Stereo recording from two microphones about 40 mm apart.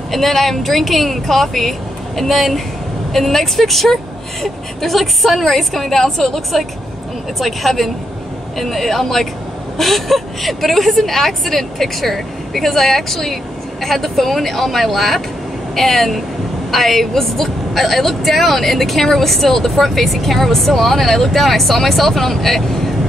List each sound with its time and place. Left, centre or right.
0.1 s a woman's voice: centre